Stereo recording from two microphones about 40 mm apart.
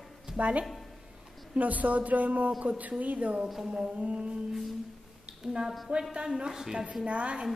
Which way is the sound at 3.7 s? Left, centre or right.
Right.